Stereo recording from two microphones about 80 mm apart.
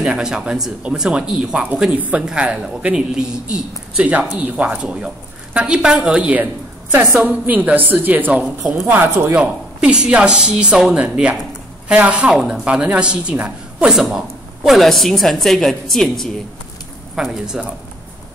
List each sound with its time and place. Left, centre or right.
0.0 s a woman's voice: centre
6.4 s a sound: right
7.2 s a woman's voice: right; by 17.6 s centre